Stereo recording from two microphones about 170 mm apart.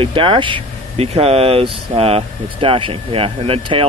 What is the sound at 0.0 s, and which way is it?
Speech, 30° right (ahead or behind).